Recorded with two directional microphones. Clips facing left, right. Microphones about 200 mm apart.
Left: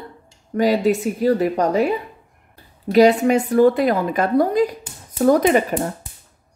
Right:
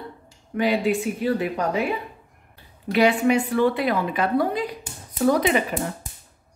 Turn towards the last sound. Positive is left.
turn(degrees=45)  # may be behind; listen again after turning